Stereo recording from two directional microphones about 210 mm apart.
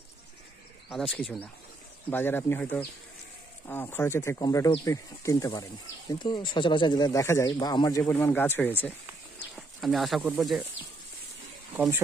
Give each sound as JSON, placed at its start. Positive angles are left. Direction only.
{"t": 0.8, "sound": "speech", "side_deg": 0}
{"t": 11.7, "sound": "speech", "side_deg": -10}